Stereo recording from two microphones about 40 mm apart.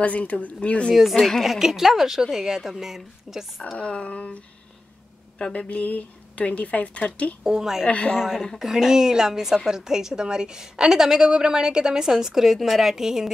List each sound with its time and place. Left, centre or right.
0.0 s speech: left
1.1 s a woman's voice: centre
1.4 s a woman's voice: centre
3.7 s speech: left
5.7 s speech: left
7.4 s a woman's voice: centre
7.9 s speech: left
8.2 s a woman's voice: centre